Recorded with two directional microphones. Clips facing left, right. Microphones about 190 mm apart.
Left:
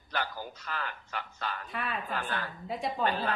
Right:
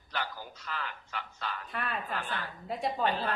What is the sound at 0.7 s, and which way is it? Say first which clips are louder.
Speech: right 1 dB; 45° left (ahead or behind).